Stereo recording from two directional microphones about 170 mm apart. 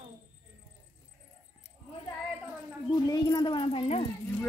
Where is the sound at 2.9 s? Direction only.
25° left (ahead or behind).